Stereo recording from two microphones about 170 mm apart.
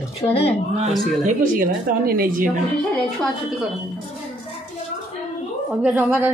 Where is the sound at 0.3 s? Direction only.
35° left (ahead or behind).